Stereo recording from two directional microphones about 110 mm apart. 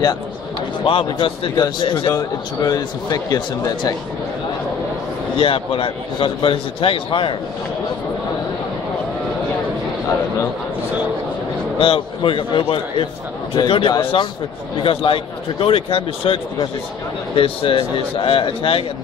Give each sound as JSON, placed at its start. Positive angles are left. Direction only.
{"t": 0.8, "sound": "a man's voice", "side_deg": 50}
{"t": 2.1, "sound": "speech", "side_deg": 35}
{"t": 5.4, "sound": "a man's voice", "side_deg": 55}
{"t": 11.8, "sound": "a man's voice", "side_deg": 55}
{"t": 14.1, "sound": "speech", "side_deg": 60}
{"t": 17.4, "sound": "speech", "side_deg": 55}